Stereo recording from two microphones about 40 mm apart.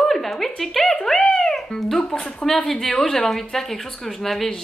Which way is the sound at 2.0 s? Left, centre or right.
Left.